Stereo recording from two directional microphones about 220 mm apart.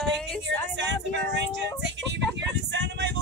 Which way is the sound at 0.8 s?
55° right (ahead or behind).